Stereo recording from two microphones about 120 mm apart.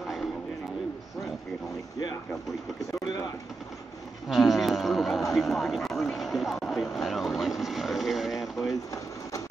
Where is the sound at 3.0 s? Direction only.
35° left (ahead or behind).